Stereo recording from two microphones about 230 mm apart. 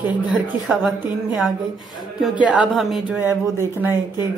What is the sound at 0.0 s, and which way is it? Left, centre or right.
Speech, centre.